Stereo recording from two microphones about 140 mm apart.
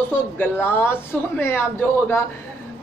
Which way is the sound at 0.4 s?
15° left (ahead or behind).